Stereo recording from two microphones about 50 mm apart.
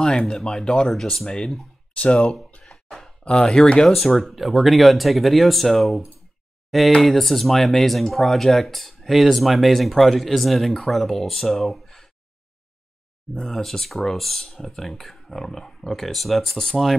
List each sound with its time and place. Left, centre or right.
0.3 s speech: centre
2.0 s speech: left
2.6 s a sound: centre
3.3 s speech: centre
3.8 s speech: centre
13.4 s speech: centre